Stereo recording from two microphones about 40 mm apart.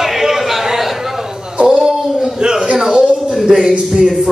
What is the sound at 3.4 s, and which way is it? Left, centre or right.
Music, centre.